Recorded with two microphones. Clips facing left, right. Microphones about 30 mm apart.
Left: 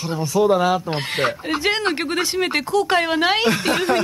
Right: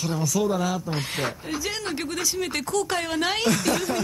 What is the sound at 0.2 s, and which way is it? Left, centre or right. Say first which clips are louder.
A woman's voice: left 9 dB; left.